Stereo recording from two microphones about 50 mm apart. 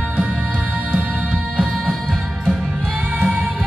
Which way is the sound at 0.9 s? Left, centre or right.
Centre.